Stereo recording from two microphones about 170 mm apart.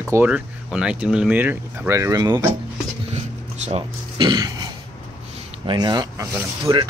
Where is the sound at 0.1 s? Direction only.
10° right (ahead or behind).